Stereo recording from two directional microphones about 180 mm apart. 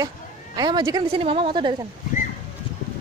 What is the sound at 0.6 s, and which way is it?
Speech, 20° right (ahead or behind).